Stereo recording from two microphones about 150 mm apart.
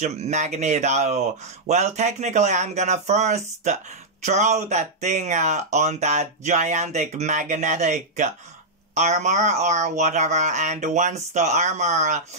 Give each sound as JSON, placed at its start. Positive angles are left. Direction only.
{"t": 0.0, "sound": "speech", "side_deg": -50}